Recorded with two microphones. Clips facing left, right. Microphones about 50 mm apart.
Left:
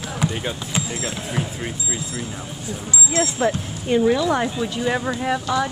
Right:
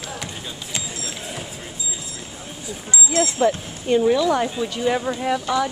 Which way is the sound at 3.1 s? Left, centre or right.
Centre.